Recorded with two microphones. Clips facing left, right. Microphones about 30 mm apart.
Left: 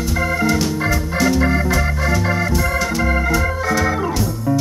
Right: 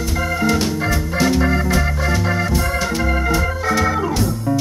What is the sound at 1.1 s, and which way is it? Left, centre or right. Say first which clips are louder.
Music: even; centre.